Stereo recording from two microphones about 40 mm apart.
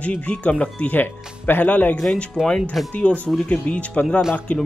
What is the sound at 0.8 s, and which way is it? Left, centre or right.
Speech, left.